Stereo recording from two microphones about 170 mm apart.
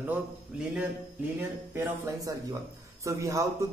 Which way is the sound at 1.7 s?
20° right (ahead or behind).